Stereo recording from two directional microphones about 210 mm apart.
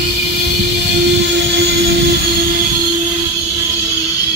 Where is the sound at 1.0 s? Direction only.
55° right (ahead or behind).